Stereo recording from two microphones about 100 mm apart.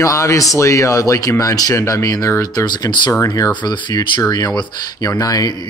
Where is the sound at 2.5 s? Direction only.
45° left (ahead or behind).